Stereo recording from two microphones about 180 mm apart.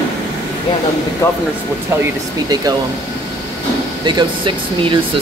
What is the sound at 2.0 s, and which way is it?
Speech, 20° right (ahead or behind).